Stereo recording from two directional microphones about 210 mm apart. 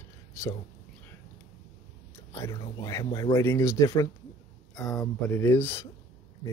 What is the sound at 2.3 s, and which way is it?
Speech, 15° left (ahead or behind).